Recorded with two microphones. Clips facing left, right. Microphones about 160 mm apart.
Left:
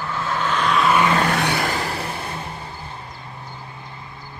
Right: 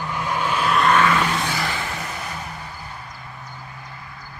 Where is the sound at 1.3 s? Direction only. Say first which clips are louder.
Left 4 dB; 60° left (ahead or behind).